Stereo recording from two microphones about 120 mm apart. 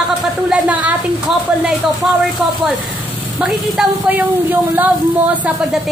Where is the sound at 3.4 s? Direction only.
5° right (ahead or behind).